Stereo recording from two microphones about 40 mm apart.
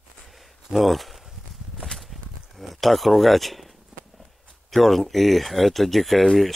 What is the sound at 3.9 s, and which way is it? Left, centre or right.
Walk, centre.